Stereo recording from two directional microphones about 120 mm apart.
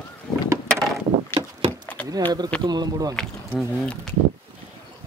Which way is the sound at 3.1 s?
5° left (ahead or behind).